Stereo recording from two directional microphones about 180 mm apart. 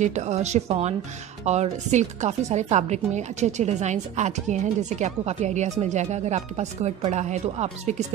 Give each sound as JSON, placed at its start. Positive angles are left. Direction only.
{"t": 0.0, "sound": "a woman's voice", "side_deg": -40}